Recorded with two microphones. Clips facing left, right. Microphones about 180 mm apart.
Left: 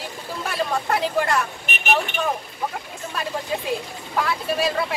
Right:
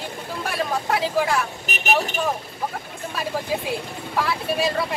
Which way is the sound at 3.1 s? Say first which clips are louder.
Right 1 dB; centre (ahead or behind).